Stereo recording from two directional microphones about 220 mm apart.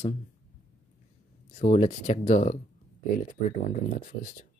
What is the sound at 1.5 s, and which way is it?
Speech, 35° left (ahead or behind).